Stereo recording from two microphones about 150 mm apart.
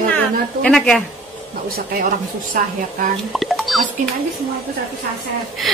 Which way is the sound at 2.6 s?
65° right (ahead or behind).